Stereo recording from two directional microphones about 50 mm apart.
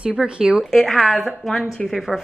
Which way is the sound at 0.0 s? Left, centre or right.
Centre.